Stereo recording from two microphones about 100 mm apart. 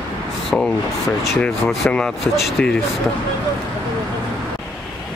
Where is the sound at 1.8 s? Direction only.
10° left (ahead or behind).